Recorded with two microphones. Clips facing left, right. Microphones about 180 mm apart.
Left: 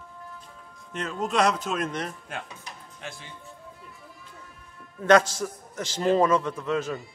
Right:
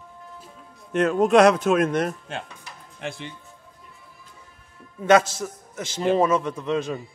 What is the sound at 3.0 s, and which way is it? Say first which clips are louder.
Speech: right 9 dB; 70° right (ahead or behind).